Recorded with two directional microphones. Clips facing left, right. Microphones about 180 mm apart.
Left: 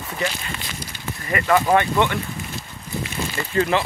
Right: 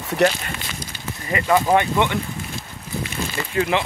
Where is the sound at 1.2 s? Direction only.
15° right (ahead or behind).